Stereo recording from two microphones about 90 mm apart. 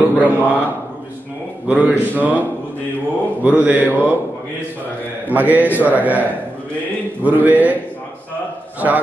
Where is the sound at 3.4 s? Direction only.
15° right (ahead or behind).